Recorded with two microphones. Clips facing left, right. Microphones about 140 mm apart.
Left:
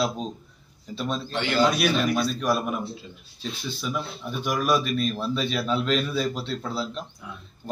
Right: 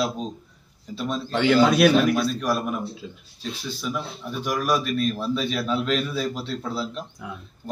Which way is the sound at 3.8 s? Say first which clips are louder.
Even; centre (ahead or behind).